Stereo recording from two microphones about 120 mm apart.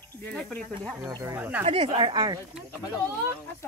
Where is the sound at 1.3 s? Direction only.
15° right (ahead or behind).